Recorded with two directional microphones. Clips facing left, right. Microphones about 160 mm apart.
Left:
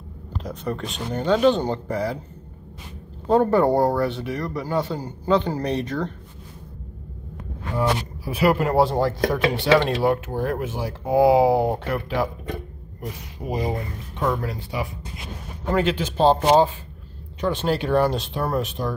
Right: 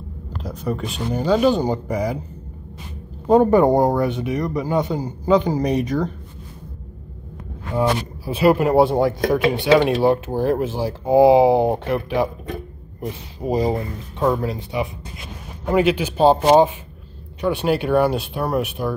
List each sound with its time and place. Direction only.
0.4 s speech: 5° right (ahead or behind)
3.3 s speech: 15° right (ahead or behind)
7.7 s speech: 25° right (ahead or behind)
10.0 s speech: 30° right (ahead or behind)
13.0 s speech: 35° right (ahead or behind)
14.3 s speech: 20° right (ahead or behind)
15.7 s speech: 10° right (ahead or behind)